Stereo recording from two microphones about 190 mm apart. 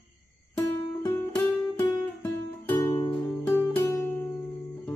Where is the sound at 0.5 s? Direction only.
15° left (ahead or behind).